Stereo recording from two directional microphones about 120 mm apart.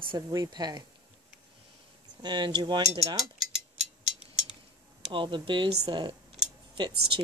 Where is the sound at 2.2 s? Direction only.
40° right (ahead or behind).